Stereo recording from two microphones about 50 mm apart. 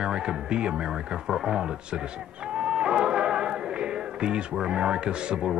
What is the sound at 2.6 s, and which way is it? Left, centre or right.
Music, centre.